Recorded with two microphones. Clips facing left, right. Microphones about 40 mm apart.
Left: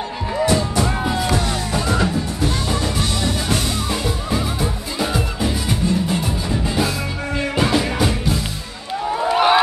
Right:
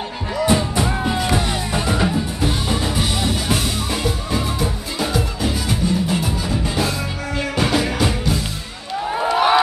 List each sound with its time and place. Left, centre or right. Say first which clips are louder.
0.5 s music: right 2 dB; right
0.8 s music: even; centre
9.3 s a sound: left 1 dB; left